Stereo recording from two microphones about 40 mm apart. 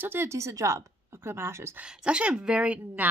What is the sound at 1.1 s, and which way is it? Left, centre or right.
Speech, right.